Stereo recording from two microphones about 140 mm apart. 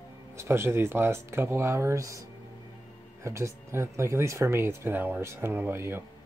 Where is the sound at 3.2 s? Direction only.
20° right (ahead or behind).